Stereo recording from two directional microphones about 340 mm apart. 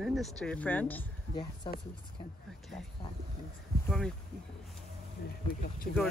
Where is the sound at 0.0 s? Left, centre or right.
Centre.